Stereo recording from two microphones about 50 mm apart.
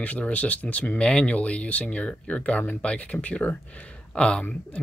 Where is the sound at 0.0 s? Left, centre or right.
Left.